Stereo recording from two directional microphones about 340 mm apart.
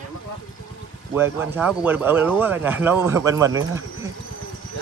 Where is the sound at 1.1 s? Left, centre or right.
Centre.